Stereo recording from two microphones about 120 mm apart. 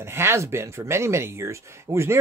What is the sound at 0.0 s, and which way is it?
Speech, 20° right (ahead or behind).